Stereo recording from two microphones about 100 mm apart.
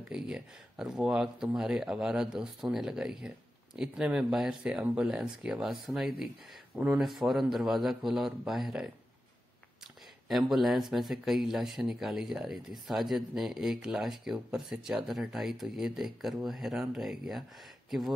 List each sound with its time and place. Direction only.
0.1 s speech: 5° right (ahead or behind)
6.7 s speech: 15° right (ahead or behind)
7.0 s speech: centre (ahead or behind)
10.2 s speech: centre (ahead or behind)